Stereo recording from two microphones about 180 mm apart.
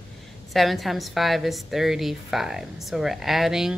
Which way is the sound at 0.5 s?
Centre (ahead or behind).